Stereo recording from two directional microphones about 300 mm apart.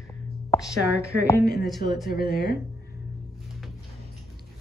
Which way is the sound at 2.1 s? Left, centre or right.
Left.